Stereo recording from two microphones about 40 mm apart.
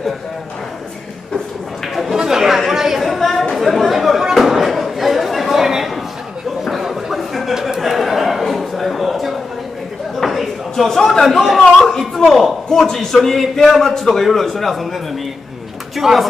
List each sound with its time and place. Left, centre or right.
2.0 s chatter: centre
3.0 s chatter: centre
4.3 s a sound: centre
11.2 s a man's voice: centre
12.6 s a man's voice: centre
16.0 s speech: centre